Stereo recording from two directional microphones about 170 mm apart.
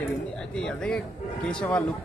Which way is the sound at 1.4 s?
5° left (ahead or behind).